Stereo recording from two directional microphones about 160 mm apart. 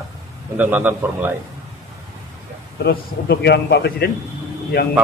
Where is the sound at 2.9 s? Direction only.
90° left.